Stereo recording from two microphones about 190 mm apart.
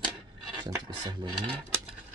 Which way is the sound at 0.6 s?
20° right (ahead or behind).